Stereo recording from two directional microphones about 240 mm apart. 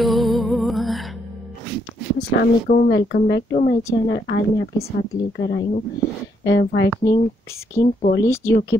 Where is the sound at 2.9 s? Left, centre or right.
Left.